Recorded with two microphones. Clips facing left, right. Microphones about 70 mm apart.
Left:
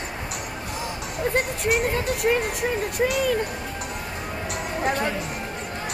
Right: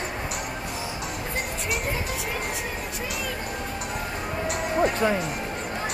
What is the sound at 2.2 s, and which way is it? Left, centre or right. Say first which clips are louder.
Speech: left 9 dB; left.